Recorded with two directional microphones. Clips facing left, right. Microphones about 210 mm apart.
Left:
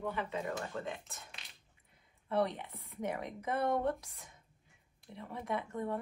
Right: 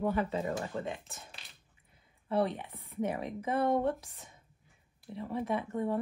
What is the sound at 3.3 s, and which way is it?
Speech, 25° right (ahead or behind).